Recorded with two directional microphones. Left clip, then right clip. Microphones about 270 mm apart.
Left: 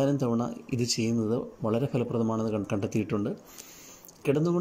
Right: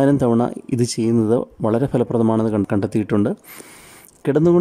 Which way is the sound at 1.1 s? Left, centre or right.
Right.